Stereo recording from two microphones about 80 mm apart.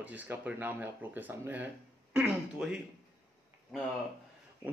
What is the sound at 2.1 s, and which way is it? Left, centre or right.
Speech, centre.